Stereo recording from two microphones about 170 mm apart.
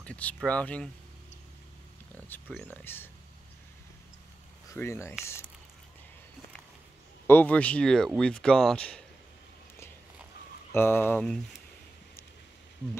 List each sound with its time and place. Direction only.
0.0 s speech: 10° left (ahead or behind)
2.1 s speech: 10° left (ahead or behind)
4.7 s speech: 15° left (ahead or behind)
7.2 s speech: 10° left (ahead or behind)
10.7 s speech: 15° left (ahead or behind)